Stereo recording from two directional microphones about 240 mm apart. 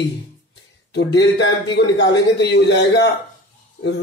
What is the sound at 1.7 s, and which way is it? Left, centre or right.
Speech, left.